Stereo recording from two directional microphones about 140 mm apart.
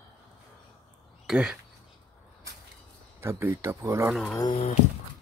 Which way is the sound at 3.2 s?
20° right (ahead or behind).